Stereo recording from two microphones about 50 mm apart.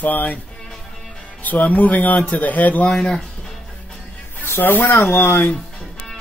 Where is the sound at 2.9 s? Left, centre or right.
Centre.